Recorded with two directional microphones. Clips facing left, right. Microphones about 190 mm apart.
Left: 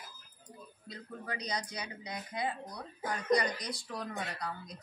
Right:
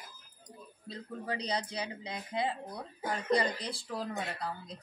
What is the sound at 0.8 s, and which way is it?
Speech, 30° right (ahead or behind).